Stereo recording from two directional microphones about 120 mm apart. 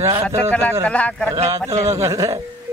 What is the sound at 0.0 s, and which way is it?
Speech, 25° right (ahead or behind).